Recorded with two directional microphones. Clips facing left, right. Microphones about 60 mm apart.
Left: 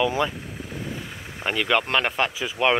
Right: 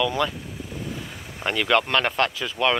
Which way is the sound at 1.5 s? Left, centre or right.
Centre.